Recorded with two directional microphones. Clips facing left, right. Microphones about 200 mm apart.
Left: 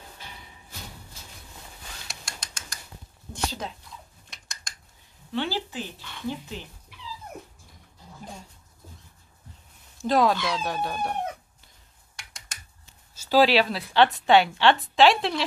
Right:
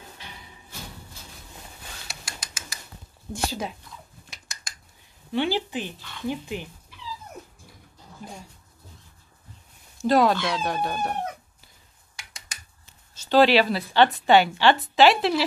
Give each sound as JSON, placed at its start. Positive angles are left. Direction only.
{"t": 2.0, "sound": "a sound", "side_deg": 0}
{"t": 3.4, "sound": "speech", "side_deg": -10}
{"t": 4.3, "sound": "scissors", "side_deg": 0}
{"t": 5.3, "sound": "speech", "side_deg": -15}
{"t": 9.9, "sound": "a woman's voice", "side_deg": 0}
{"t": 12.2, "sound": "computer keyboard", "side_deg": 0}
{"t": 13.1, "sound": "a woman's voice", "side_deg": 5}